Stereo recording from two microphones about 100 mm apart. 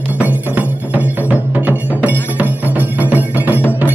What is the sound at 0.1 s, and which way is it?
Music, 15° right (ahead or behind).